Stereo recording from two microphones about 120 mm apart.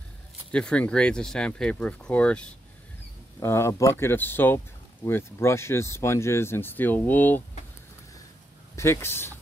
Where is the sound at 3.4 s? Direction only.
20° left (ahead or behind).